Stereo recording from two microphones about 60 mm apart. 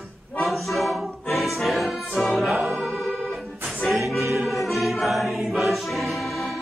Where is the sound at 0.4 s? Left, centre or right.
Centre.